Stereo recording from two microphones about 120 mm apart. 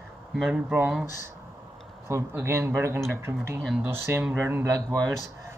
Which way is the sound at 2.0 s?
20° right (ahead or behind).